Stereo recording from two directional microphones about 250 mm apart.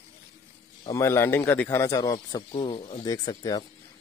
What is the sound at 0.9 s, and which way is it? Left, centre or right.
Speech, centre.